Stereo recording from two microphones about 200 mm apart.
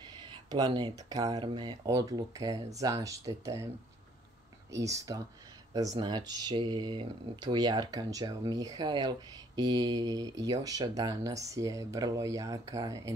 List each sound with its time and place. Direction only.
0.5 s speech: 20° right (ahead or behind)
4.7 s speech: 15° right (ahead or behind)